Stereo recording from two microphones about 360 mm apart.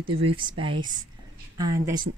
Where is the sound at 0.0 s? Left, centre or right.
Centre.